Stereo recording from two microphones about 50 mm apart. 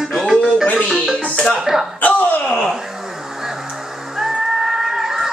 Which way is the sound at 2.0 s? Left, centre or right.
Left.